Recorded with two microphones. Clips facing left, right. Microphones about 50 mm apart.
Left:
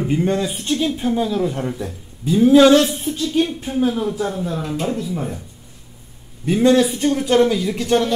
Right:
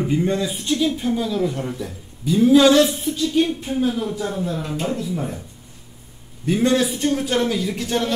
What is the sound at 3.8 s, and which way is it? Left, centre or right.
Speech, left.